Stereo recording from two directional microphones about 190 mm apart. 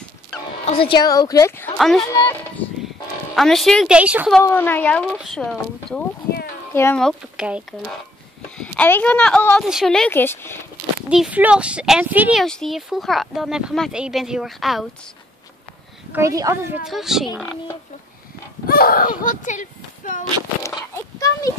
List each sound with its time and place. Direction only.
0.7 s a woman's voice: 30° left (ahead or behind)
1.8 s speech: centre (ahead or behind)
2.0 s speech: 15° left (ahead or behind)
3.3 s speech: centre (ahead or behind)
4.4 s speech: 10° left (ahead or behind); by 7.9 s 5° right (ahead or behind)
8.5 s speech: 10° left (ahead or behind)
11.1 s speech: 5° right (ahead or behind)
16.1 s speech: 15° right (ahead or behind)
16.8 s speech: centre (ahead or behind)
18.7 s speech: 50° left (ahead or behind)
20.6 s oink: 15° left (ahead or behind)